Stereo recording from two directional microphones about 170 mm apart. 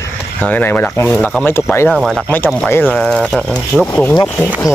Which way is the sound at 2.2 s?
10° left (ahead or behind).